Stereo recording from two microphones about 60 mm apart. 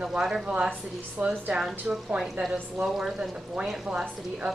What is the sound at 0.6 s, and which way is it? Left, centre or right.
A woman's voice, right.